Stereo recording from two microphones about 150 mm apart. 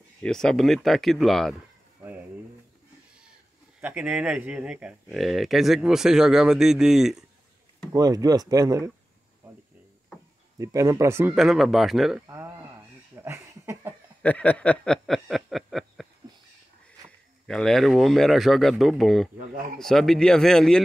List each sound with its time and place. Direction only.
0.2 s speech: 5° left (ahead or behind)
3.8 s speech: 10° right (ahead or behind)
7.9 s speech: 25° right (ahead or behind)
10.6 s speech: 20° right (ahead or behind)
11.3 s speech: centre (ahead or behind)
13.1 s a sound: 15° right (ahead or behind)
14.2 s a sound: 10° left (ahead or behind)
17.5 s speech: centre (ahead or behind)